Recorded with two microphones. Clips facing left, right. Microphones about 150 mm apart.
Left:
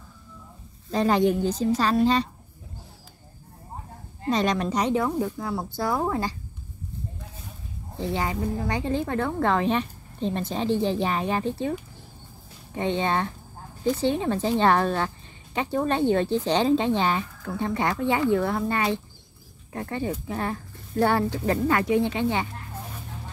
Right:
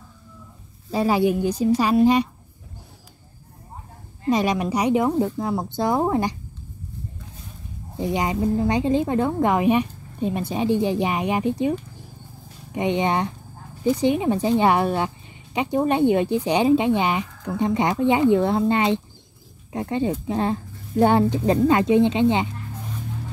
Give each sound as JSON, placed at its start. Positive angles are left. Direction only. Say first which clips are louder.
{"t": 0.9, "sound": "speech", "louder": "right 1 dB", "side_deg": -10}
{"t": 4.3, "sound": "speech", "louder": "right 3 dB", "side_deg": -10}
{"t": 8.0, "sound": "speech", "louder": "right 5 dB", "side_deg": -15}
{"t": 12.7, "sound": "speech", "louder": "right 3 dB", "side_deg": -15}